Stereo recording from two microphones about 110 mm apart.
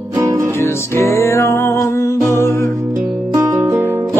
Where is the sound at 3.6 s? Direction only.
20° right (ahead or behind).